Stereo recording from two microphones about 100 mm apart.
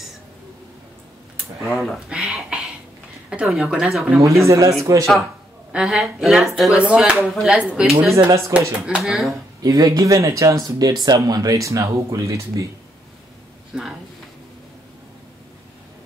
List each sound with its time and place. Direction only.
1.6 s speech: centre (ahead or behind)
4.2 s speech: 30° right (ahead or behind)
5.7 s speech: 5° right (ahead or behind)
8.1 s speech: 30° right (ahead or behind)
8.7 s speech: 10° right (ahead or behind)
9.6 s speech: 35° right (ahead or behind)
13.7 s speech: 10° right (ahead or behind)